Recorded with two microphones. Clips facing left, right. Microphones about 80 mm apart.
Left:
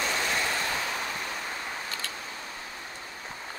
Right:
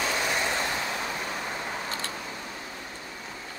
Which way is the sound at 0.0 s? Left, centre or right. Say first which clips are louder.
Right 1 dB; centre.